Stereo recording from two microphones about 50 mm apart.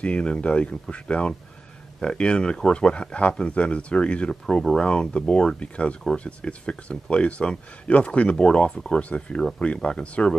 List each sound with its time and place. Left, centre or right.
0.0 s speech: left